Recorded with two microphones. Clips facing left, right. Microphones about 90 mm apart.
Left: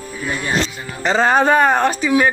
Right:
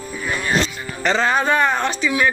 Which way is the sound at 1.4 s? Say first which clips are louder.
Left 4 dB; 35° left (ahead or behind).